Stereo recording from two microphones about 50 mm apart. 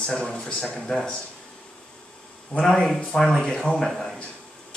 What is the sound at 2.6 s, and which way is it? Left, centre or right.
Speech, centre.